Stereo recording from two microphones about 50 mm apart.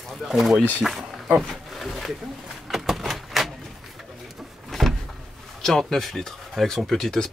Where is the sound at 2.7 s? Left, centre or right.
Centre.